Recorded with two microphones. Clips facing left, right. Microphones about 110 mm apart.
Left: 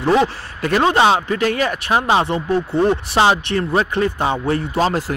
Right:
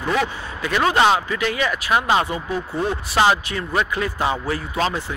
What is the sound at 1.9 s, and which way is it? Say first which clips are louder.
Speech: left 2 dB; 30° left (ahead or behind).